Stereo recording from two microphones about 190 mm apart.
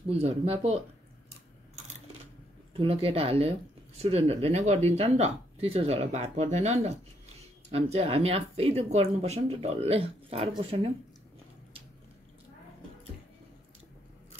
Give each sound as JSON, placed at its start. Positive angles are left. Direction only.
{"t": 0.1, "sound": "speech", "side_deg": -30}
{"t": 2.7, "sound": "speech", "side_deg": -30}